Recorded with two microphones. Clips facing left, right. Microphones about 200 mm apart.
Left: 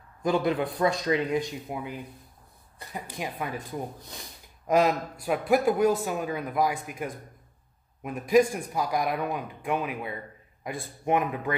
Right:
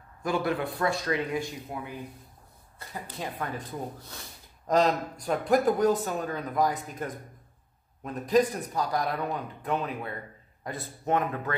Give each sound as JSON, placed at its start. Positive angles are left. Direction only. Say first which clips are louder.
{"t": 0.2, "sound": "speech", "louder": "left 3 dB", "side_deg": 20}